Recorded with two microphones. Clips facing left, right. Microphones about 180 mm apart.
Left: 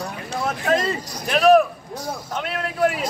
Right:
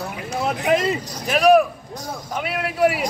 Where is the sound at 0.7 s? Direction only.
15° right (ahead or behind).